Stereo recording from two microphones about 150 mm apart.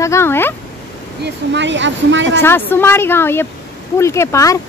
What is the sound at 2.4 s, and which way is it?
Speech, 15° left (ahead or behind).